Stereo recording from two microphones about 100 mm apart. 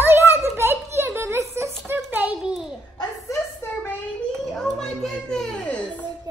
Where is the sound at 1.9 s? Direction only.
20° right (ahead or behind).